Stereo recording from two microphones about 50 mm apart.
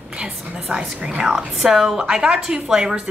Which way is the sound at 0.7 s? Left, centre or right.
Right.